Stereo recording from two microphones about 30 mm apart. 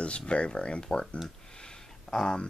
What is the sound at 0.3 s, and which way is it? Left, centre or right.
Speech, left.